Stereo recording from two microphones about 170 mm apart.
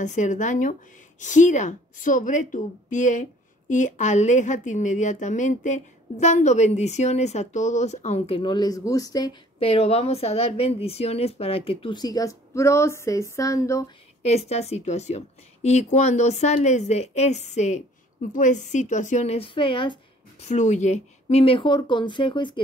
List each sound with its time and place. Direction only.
0.0 s a woman's voice: 45° left (ahead or behind); by 13.8 s 20° left (ahead or behind)
14.2 s a woman's voice: 40° left (ahead or behind)